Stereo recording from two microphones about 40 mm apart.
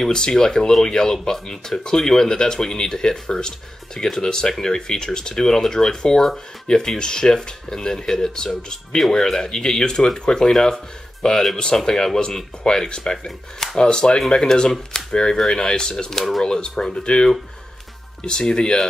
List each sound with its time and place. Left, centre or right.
0.0 s speech: centre
16.4 s speech: centre